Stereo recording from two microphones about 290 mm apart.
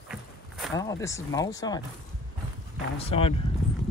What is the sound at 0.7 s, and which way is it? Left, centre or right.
Speech, centre.